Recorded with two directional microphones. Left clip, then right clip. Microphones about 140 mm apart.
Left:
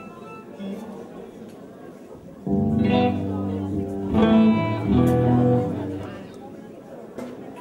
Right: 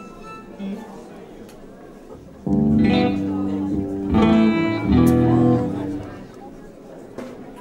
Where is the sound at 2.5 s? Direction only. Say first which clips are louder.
Right 3 dB; 30° right (ahead or behind).